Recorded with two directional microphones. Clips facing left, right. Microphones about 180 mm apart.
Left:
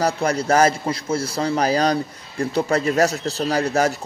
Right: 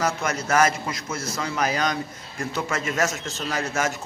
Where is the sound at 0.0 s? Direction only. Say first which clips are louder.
Left 5 dB; 35° left (ahead or behind).